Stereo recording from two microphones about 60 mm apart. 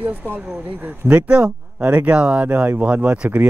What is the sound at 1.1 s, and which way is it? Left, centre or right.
Speech, right.